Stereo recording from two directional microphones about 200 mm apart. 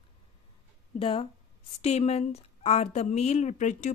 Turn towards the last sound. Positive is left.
turn(degrees=35)  # may be behind; listen again after turning